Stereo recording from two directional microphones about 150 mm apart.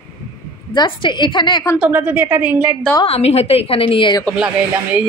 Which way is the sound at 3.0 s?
45° left (ahead or behind).